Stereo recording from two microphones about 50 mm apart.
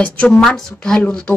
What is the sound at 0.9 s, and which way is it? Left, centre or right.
Speech, centre.